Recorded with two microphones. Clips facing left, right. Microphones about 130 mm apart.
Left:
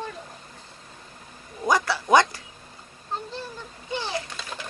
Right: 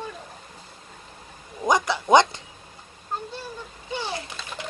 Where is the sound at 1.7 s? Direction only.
20° right (ahead or behind).